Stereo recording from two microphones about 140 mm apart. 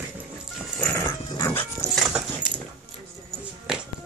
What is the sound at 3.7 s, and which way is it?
Music, 5° right (ahead or behind).